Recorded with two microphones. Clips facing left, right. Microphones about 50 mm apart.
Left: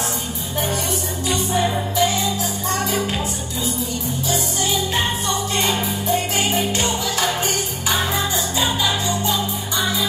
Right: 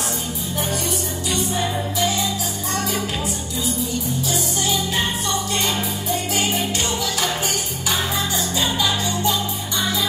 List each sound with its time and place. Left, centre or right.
1.5 s music: centre
8.5 s music: centre